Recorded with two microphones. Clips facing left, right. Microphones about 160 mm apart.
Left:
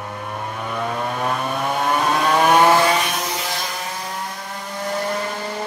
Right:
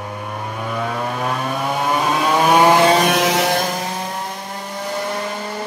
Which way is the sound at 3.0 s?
85° right.